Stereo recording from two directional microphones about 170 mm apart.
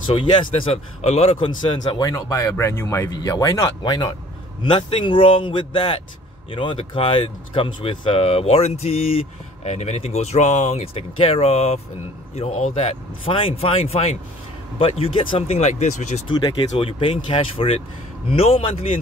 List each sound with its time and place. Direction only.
0.1 s a man's voice: 30° left (ahead or behind)
16.3 s speech: 25° left (ahead or behind)